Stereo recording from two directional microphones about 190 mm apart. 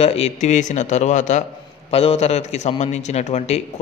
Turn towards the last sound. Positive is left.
turn(degrees=35)  # may be behind; listen again after turning